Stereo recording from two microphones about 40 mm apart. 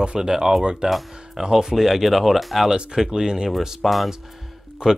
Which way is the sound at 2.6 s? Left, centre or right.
Centre.